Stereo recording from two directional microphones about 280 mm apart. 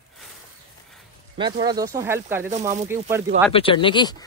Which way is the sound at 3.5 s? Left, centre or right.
Centre.